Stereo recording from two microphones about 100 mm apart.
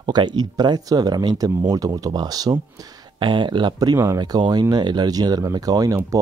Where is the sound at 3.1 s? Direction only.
55° right (ahead or behind).